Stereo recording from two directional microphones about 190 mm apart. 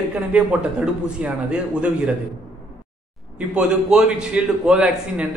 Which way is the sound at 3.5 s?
5° right (ahead or behind).